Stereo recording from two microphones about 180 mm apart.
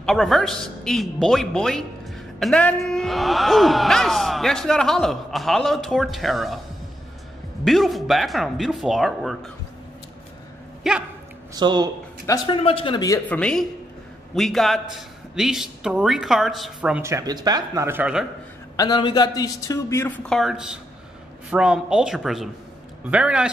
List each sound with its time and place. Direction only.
0.0 s speech: centre (ahead or behind)
7.6 s speech: centre (ahead or behind)
10.8 s speech: 5° right (ahead or behind)
11.5 s a man's voice: 25° right (ahead or behind)
12.3 s a man's voice: 30° left (ahead or behind)
13.3 s speech: 5° left (ahead or behind)
18.8 s a man's voice: 25° left (ahead or behind)
20.2 s speech: centre (ahead or behind)